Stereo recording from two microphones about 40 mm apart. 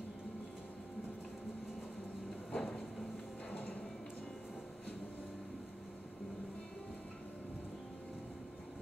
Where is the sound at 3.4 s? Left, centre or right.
Left.